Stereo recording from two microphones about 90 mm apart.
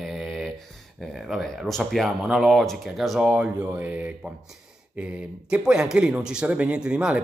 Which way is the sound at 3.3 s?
15° right (ahead or behind).